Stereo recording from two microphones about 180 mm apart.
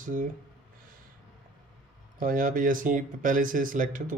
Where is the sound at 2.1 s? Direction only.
50° right (ahead or behind).